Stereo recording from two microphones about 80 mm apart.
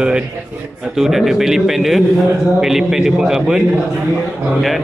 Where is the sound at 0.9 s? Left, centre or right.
Centre.